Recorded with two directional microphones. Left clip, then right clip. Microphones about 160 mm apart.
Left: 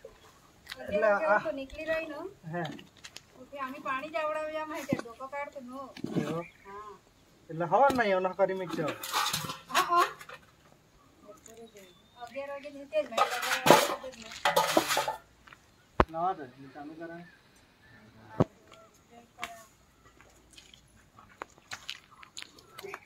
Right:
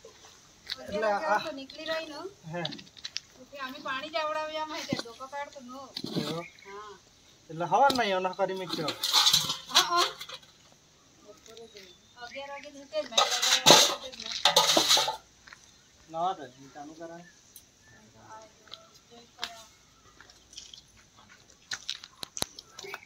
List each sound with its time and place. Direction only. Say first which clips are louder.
0.7 s speech: left 2 dB; 5° left (ahead or behind)
1.6 s a child's voice: left 1 dB; 40° left (ahead or behind)
2.6 s typing: right 3 dB; 15° left (ahead or behind)
3.5 s speech: left 1 dB; 25° left (ahead or behind)
5.9 s speech: right 1 dB; 5° left (ahead or behind)
7.5 s speech: right 1 dB; 5° left (ahead or behind)
9.8 s a sound: right 1 dB; 25° left (ahead or behind)
10.1 s a sound: right 4 dB; 5° right (ahead or behind)
12.4 s speech: left 3 dB; 25° left (ahead or behind)
13.1 s speech: right 6 dB; 5° right (ahead or behind)
14.1 s speech: right 8 dB; 15° left (ahead or behind)
14.4 s a sound: right 3 dB; 5° right (ahead or behind)
16.1 s speech: right 1 dB; 5° right (ahead or behind)